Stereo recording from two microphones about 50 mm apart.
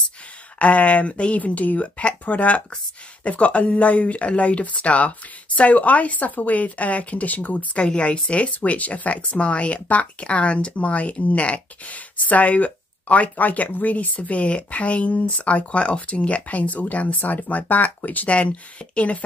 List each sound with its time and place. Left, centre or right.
0.6 s speech: left
7.8 s speech: left